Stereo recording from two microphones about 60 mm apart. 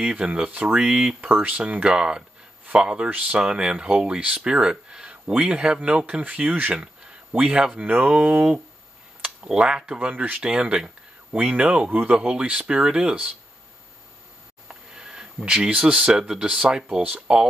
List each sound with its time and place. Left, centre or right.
0.0 s speech: centre
6.8 s speech: centre
9.9 s speech: right
10.4 s speech: centre
11.9 s speech: right
14.7 s a sound: centre
15.9 s speech: centre